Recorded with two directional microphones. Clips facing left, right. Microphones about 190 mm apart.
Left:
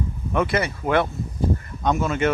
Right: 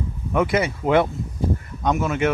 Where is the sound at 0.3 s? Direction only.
15° right (ahead or behind).